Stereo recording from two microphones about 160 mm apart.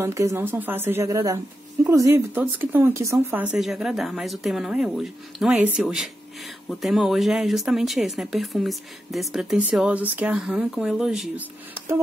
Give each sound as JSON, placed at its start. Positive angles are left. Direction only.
{"t": 0.0, "sound": "speech", "side_deg": -20}